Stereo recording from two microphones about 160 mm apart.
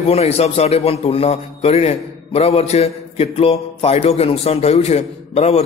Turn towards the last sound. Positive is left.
turn(degrees=40)  # may be behind; listen again after turning